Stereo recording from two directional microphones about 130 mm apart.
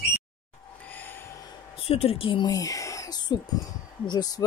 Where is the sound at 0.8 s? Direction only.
15° left (ahead or behind).